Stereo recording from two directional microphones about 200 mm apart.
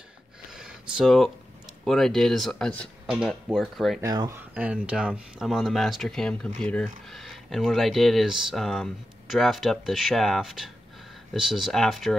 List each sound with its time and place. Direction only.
0.5 s a sound: 5° right (ahead or behind)
1.9 s speech: centre (ahead or behind)
4.0 s speech: 20° right (ahead or behind)
4.6 s speech: 5° right (ahead or behind)